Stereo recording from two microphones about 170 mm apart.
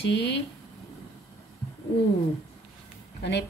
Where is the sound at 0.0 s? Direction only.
85° left.